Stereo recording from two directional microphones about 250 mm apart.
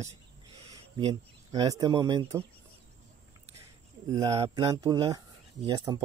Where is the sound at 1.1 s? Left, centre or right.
Centre.